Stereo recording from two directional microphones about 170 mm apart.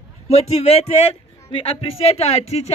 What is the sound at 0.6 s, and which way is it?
A man's voice, 40° left (ahead or behind).